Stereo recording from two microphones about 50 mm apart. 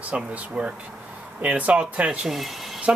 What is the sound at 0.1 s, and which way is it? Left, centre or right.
Speech, right.